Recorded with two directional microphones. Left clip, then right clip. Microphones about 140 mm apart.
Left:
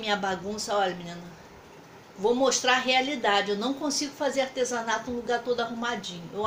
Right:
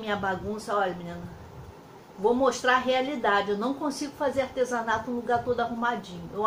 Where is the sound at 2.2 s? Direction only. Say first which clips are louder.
Even; 15° left (ahead or behind).